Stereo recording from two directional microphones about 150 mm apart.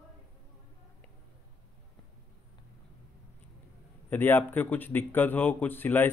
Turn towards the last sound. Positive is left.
turn(degrees=15)  # may be behind; listen again after turning